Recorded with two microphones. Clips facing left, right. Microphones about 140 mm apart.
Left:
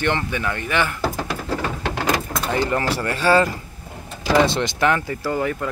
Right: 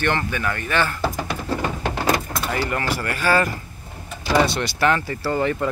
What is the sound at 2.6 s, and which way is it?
Speech, 30° left (ahead or behind).